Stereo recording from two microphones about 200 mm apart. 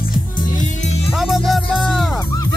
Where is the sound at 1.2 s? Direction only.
Centre (ahead or behind).